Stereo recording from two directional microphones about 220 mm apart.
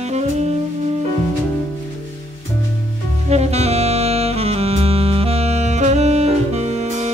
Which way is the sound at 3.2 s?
30° right (ahead or behind).